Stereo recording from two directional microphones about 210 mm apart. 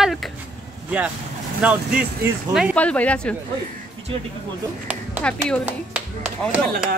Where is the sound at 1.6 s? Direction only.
5° right (ahead or behind).